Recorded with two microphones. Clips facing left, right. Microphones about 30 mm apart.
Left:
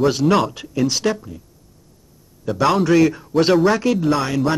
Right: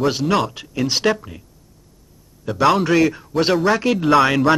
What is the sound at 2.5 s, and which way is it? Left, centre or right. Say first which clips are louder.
Speech: even; centre.